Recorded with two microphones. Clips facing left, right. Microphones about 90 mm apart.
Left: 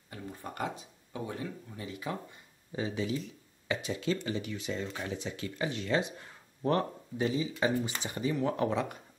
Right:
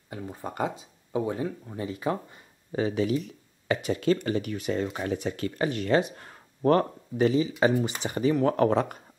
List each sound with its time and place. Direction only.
0.1 s speech: 25° right (ahead or behind)
1.7 s speech: 40° right (ahead or behind)
2.7 s speech: 65° right (ahead or behind)